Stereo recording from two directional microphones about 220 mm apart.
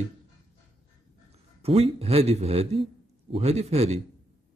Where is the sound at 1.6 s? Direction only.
25° right (ahead or behind).